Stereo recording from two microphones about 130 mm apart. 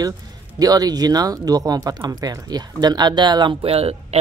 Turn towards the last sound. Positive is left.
turn(degrees=-50)  # may be behind; listen again after turning